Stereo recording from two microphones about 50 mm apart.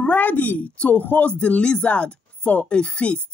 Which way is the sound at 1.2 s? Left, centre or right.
Left.